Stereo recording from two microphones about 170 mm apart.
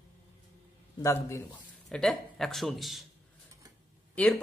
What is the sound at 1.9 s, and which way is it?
Speech, 5° left (ahead or behind).